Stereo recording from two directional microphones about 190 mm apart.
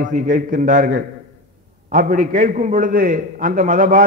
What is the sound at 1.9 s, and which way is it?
A man's voice, 45° right (ahead or behind).